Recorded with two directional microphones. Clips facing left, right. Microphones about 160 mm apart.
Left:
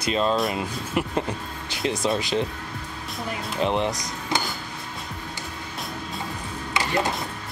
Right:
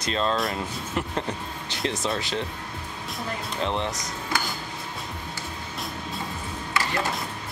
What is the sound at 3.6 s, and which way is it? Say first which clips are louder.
Speech: left 5 dB; 15° left (ahead or behind).